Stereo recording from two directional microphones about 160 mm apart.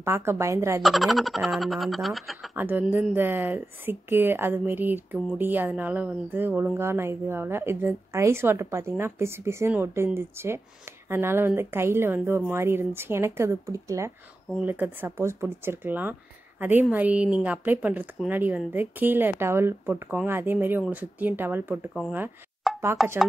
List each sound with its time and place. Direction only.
0.0 s speech: 15° right (ahead or behind)
0.8 s speech: centre (ahead or behind)
2.5 s speech: 10° right (ahead or behind)
22.7 s chopping: centre (ahead or behind)